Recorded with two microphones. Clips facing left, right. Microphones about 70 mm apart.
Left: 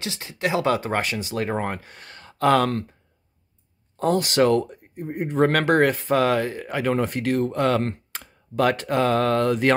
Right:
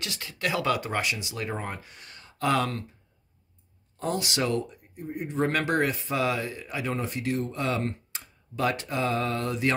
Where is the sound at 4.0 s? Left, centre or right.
Left.